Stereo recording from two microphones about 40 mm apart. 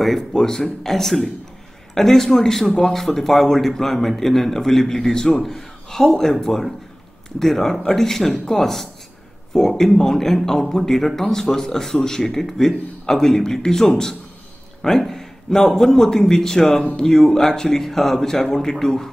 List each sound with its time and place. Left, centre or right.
0.3 s a man's voice: centre